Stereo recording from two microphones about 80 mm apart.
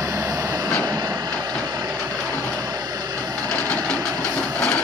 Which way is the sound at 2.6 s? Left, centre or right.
Right.